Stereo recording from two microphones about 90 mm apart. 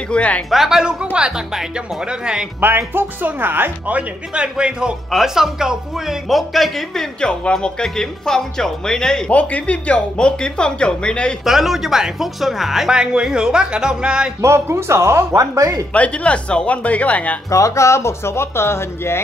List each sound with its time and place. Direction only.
0.1 s speech: 15° left (ahead or behind)
0.5 s speech: 5° right (ahead or behind)
2.6 s speech: 25° right (ahead or behind); by 11.3 s 10° left (ahead or behind)
11.4 s speech: 5° right (ahead or behind)
14.4 s speech: 30° right (ahead or behind)
15.9 s speech: 15° left (ahead or behind)
17.5 s speech: 35° left (ahead or behind)